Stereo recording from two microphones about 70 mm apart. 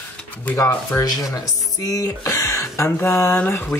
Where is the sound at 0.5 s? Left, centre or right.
Left.